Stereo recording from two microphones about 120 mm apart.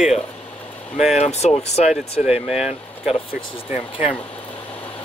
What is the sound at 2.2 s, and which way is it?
Speech, 5° right (ahead or behind).